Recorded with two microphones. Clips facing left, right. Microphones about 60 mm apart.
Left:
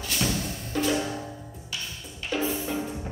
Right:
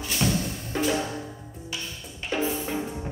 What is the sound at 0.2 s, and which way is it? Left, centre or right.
Music, centre.